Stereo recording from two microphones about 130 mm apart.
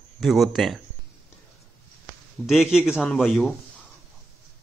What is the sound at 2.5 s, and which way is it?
A man's voice, 5° right (ahead or behind).